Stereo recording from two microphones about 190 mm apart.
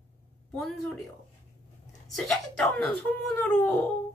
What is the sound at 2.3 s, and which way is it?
Speech, 5° left (ahead or behind).